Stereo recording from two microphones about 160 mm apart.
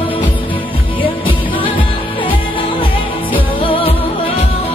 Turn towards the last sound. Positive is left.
turn(degrees=35)  # may be behind; listen again after turning